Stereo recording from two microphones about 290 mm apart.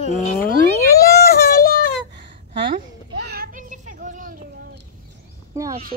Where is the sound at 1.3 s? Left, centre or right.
Left.